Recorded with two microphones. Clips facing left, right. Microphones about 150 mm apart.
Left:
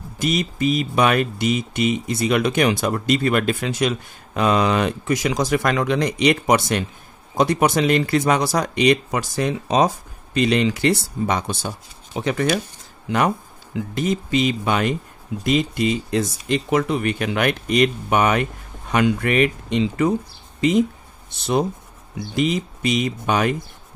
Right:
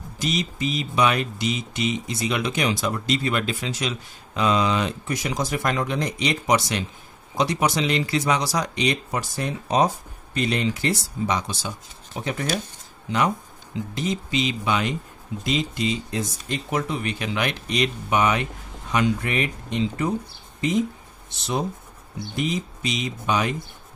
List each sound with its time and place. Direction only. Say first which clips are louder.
0.2 s speech: left 5 dB; 55° left (ahead or behind)
12.2 s speech: left 6 dB; 80° left
13.7 s speech: left 4 dB; 55° left (ahead or behind); by 20.1 s 80° left
21.3 s speech: left 6 dB; 60° left (ahead or behind)
22.3 s speech: left 5 dB; 80° left; by 23.5 s 55° left (ahead or behind)